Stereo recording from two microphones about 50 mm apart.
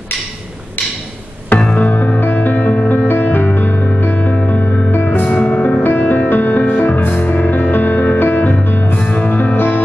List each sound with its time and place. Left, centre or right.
1.8 s music: left
5.2 s music: left
5.8 s music: left
9.0 s music: left
9.6 s music: left